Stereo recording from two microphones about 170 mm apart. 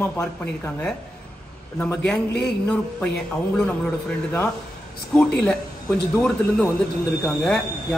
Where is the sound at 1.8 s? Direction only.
10° left (ahead or behind).